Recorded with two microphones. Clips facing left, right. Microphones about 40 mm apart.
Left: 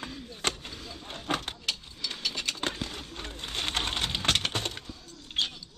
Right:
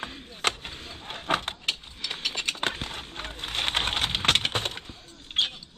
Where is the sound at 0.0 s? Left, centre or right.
Right.